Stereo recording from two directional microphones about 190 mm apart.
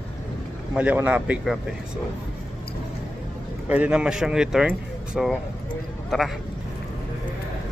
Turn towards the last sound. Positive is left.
turn(degrees=0)  # may be behind; listen again after turning